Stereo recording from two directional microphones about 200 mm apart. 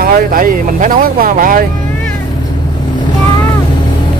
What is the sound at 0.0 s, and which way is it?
Speech, 45° right (ahead or behind).